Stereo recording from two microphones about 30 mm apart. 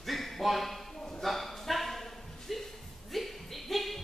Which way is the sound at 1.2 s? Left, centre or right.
Centre.